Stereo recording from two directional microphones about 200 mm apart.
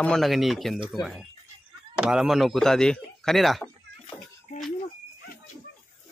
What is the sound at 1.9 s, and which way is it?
Speech, 5° right (ahead or behind).